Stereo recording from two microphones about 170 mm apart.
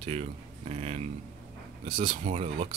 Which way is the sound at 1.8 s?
30° right (ahead or behind).